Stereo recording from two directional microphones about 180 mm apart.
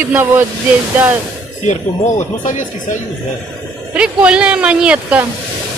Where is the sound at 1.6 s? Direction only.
40° left (ahead or behind).